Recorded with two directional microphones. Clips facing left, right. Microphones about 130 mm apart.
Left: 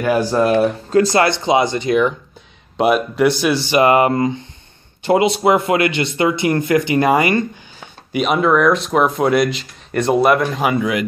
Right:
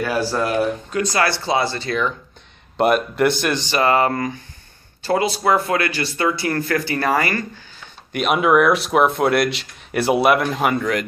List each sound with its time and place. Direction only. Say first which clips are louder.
0.0 s speech: left 5 dB; 20° left (ahead or behind)
2.8 s speech: left 2 dB; centre (ahead or behind)
8.1 s speech: left 1 dB; centre (ahead or behind)